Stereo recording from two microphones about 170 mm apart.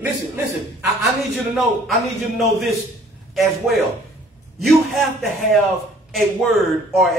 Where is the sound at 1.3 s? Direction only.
Centre (ahead or behind).